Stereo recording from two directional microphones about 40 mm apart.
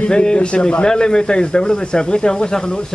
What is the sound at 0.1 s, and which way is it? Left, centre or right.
A man's voice, left.